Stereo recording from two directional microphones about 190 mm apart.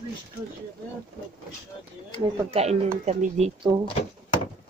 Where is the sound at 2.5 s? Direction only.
35° right (ahead or behind).